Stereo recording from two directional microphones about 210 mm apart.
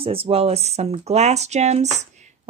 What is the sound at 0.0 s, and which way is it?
Speech, 25° right (ahead or behind).